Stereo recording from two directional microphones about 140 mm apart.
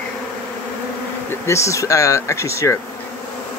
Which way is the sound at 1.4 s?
20° left (ahead or behind).